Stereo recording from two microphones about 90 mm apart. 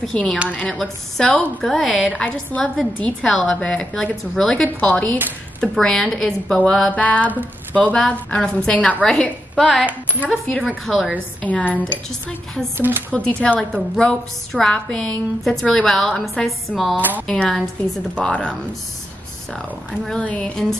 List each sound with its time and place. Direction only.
0.0 s a woman's voice: 5° left (ahead or behind)
6.9 s a woman's voice: 15° left (ahead or behind)
10.9 s a woman's voice: centre (ahead or behind)
11.4 s a woman's voice: 15° left (ahead or behind)
12.1 s a woman's voice: 5° left (ahead or behind)
12.7 s speech: 20° right (ahead or behind)
13.1 s a woman's voice: 10° left (ahead or behind)
16.9 s speech: 20° right (ahead or behind)
17.3 s a woman's voice: 5° left (ahead or behind)
20.1 s a woman's voice: 15° left (ahead or behind)